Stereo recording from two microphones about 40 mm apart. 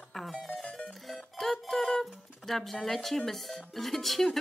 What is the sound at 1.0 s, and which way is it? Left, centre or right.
Music, centre.